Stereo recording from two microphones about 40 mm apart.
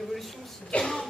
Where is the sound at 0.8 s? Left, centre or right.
Centre.